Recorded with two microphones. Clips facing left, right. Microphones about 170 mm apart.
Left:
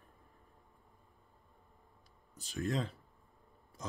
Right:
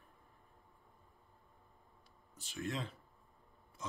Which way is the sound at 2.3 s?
40° left (ahead or behind).